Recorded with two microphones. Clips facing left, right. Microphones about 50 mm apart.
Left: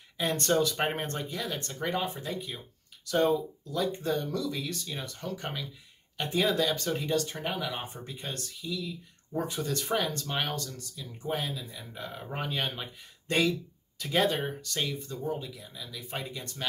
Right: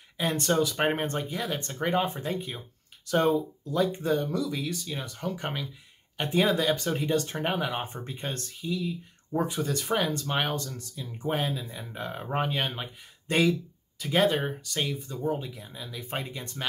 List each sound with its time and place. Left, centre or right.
0.2 s speech: centre; by 2.6 s right
3.7 s speech: right
7.4 s speech: right
9.5 s speech: centre; by 12.4 s right
12.4 s speech: right
12.8 s speech: centre